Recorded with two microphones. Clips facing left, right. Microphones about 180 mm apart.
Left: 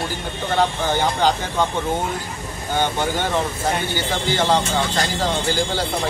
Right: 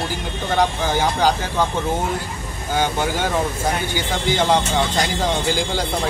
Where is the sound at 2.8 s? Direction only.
10° right (ahead or behind).